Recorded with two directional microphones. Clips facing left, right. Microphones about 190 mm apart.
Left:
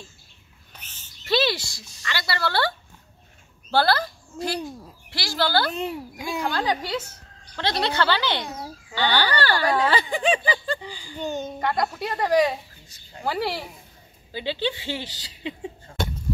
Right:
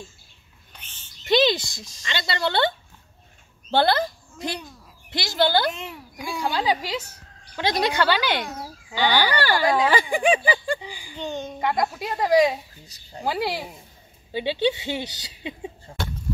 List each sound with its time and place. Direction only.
0.7 s bird: 10° left (ahead or behind)
1.2 s speech: 20° right (ahead or behind)
3.7 s a woman's voice: 20° right (ahead or behind)
5.7 s speech: 35° left (ahead or behind)
6.4 s speech: 10° right (ahead or behind)
11.1 s a child's voice: 5° left (ahead or behind)
11.6 s speech: 10° right (ahead or behind)
12.8 s speech: 35° right (ahead or behind)
13.2 s speech: 10° right (ahead or behind)